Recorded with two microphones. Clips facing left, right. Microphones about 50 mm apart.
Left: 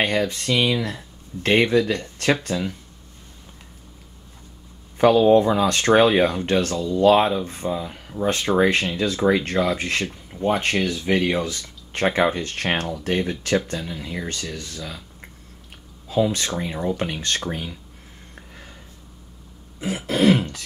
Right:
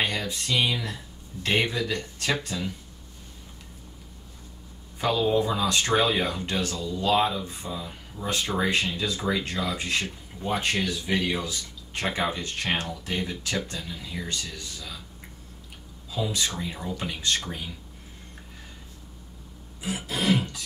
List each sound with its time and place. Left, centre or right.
0.0 s speech: left
4.9 s speech: left
11.4 s speech: left
19.8 s speech: left